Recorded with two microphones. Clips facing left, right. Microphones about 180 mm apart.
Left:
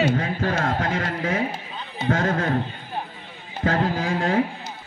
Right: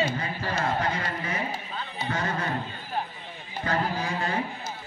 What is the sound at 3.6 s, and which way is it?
Speech, 90° left.